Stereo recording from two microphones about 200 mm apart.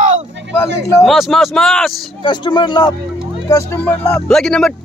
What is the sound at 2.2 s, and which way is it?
Speech, 20° left (ahead or behind).